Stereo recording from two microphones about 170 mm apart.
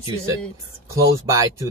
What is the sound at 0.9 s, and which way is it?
Speech, 20° right (ahead or behind).